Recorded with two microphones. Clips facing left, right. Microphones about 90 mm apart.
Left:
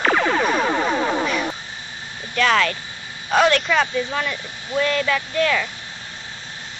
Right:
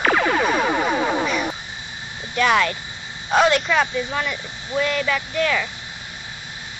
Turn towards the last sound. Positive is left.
turn(degrees=-5)  # may be behind; listen again after turning